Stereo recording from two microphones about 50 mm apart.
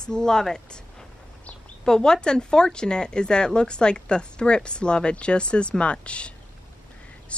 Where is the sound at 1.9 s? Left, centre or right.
Centre.